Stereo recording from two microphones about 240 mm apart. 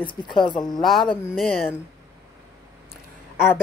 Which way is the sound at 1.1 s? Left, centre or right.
Centre.